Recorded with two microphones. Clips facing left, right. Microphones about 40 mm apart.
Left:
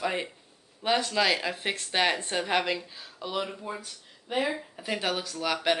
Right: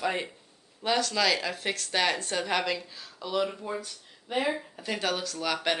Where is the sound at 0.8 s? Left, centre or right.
Left.